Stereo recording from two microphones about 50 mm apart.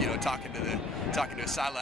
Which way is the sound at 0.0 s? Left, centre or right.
Centre.